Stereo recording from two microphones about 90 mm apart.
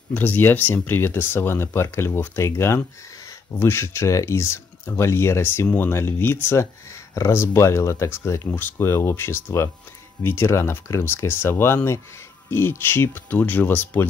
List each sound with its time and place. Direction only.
0.1 s speech: 20° left (ahead or behind)